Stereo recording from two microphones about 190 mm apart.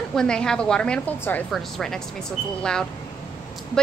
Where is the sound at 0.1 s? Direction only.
5° left (ahead or behind).